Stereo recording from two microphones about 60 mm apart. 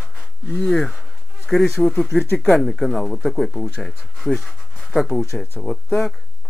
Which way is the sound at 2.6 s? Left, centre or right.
Centre.